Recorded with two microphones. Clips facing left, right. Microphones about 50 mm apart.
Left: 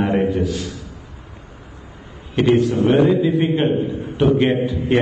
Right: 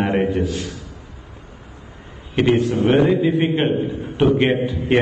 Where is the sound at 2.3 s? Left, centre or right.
Right.